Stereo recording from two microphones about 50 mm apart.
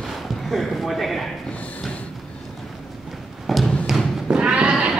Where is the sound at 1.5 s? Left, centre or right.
Left.